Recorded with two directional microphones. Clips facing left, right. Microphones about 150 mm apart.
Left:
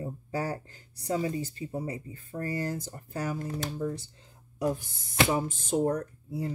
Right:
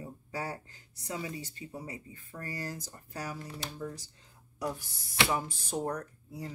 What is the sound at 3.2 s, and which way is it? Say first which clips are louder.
Speech: left 7 dB; 45° left (ahead or behind).